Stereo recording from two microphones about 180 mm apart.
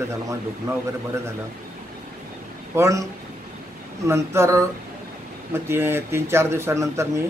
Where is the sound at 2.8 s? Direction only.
15° right (ahead or behind).